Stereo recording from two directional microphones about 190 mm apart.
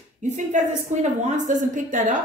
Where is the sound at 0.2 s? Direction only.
40° right (ahead or behind).